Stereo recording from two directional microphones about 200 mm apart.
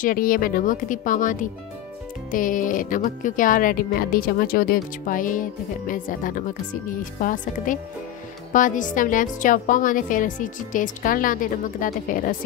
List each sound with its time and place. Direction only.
0.0 s a woman's voice: 45° left (ahead or behind)